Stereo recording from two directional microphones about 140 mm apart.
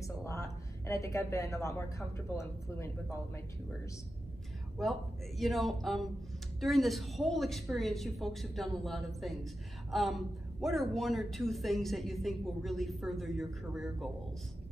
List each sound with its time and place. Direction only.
0.0 s a woman's voice: 20° left (ahead or behind)
4.8 s speech: centre (ahead or behind)